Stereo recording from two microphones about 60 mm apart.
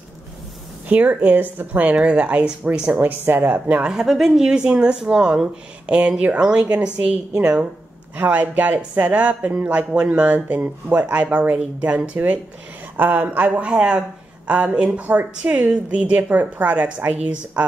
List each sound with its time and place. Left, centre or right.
0.8 s speech: right
3.0 s speech: right
3.8 s speech: centre